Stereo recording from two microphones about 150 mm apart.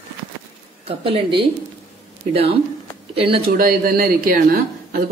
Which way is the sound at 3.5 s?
80° right.